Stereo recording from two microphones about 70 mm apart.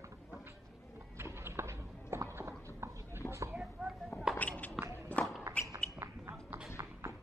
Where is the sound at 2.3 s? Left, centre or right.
Right.